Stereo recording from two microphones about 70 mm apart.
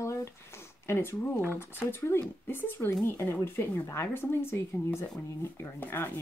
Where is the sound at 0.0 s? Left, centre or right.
Left.